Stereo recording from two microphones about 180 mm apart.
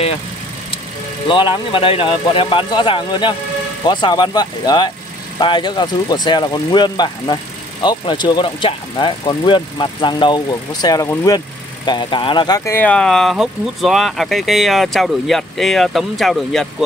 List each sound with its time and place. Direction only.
1.3 s speech: 30° left (ahead or behind); by 16.6 s centre (ahead or behind)